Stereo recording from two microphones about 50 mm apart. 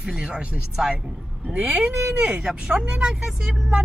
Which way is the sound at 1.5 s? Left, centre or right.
Right.